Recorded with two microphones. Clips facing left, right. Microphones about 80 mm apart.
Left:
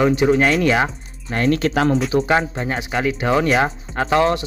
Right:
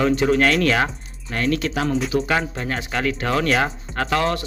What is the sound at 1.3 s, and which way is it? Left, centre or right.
Speech, left.